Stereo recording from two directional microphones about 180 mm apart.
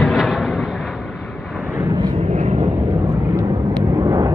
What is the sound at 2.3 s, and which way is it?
Vehicle, 40° right (ahead or behind).